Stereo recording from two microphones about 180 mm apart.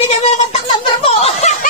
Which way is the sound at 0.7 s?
35° left (ahead or behind).